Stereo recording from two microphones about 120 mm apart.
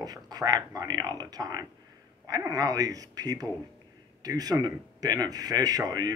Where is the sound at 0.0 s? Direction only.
30° right (ahead or behind).